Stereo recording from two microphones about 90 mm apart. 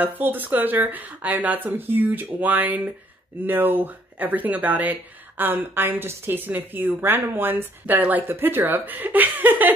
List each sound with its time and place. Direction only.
0.0 s a woman's voice: 20° right (ahead or behind)